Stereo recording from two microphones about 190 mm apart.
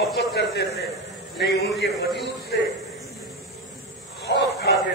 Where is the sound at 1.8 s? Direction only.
60° left (ahead or behind).